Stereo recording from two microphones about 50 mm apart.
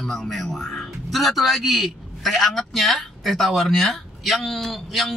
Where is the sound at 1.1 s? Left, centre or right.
Centre.